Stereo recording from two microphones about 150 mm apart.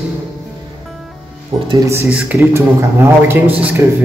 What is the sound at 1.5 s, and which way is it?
Speech, 25° right (ahead or behind).